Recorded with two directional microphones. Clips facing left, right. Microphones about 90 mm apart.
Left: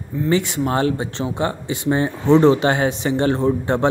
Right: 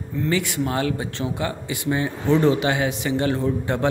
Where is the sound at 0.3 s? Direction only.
30° left (ahead or behind).